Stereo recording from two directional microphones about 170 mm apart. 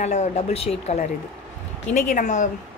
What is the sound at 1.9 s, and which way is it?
Speech, 45° left (ahead or behind).